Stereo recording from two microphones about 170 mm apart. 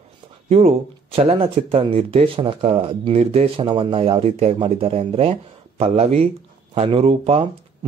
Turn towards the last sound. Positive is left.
turn(degrees=-30)  # may be behind; listen again after turning